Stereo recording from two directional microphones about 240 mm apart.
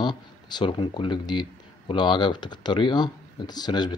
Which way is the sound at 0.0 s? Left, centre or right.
Centre.